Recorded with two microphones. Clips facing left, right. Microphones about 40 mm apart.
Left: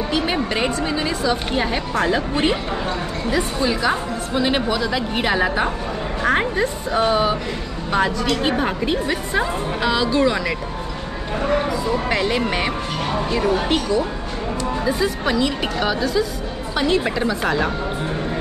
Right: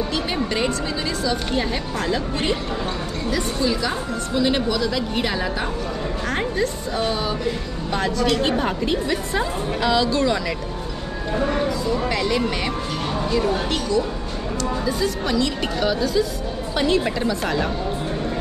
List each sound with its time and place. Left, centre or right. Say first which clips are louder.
0.1 s a woman's voice: left 3 dB; centre
7.9 s a woman's voice: left 1 dB; centre
11.6 s a woman's voice: left 1 dB; left